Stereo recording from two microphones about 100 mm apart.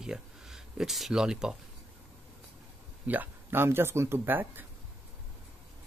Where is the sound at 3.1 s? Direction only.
20° right (ahead or behind).